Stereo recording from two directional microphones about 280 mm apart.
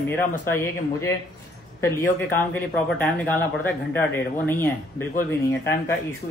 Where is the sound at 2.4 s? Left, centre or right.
Centre.